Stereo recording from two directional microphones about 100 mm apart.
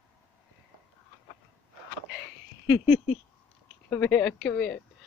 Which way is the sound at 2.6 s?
20° right (ahead or behind).